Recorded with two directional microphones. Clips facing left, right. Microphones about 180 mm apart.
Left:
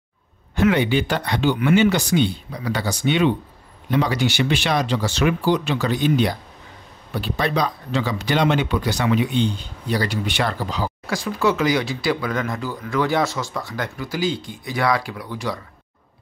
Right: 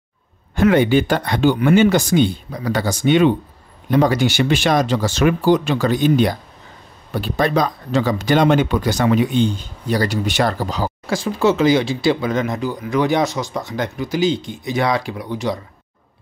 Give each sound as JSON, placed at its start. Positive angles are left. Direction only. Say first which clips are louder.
{"t": 0.6, "sound": "speech", "louder": "right 4 dB", "side_deg": -45}
{"t": 11.1, "sound": "speech", "louder": "right 4 dB", "side_deg": -25}